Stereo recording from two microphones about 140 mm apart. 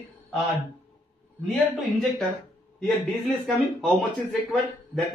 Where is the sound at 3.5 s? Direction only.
Centre (ahead or behind).